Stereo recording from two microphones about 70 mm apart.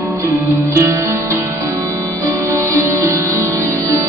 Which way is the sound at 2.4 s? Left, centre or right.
Right.